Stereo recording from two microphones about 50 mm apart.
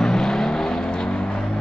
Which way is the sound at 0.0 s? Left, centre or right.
Centre.